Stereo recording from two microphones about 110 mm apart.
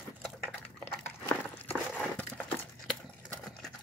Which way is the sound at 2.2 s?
15° left (ahead or behind).